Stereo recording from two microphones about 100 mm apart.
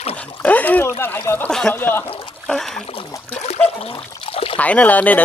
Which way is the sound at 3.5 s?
85° left.